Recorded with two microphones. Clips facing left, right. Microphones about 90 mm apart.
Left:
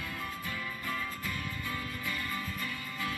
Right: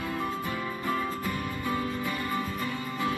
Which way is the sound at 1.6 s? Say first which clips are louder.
Right 11 dB; 25° right (ahead or behind).